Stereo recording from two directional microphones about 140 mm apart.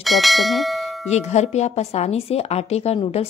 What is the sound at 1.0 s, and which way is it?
A woman's voice, 55° left (ahead or behind).